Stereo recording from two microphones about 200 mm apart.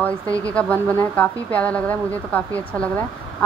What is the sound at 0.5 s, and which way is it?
Speech, 5° left (ahead or behind).